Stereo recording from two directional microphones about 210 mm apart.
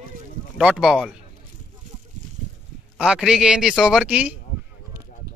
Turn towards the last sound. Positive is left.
turn(degrees=-5)  # may be behind; listen again after turning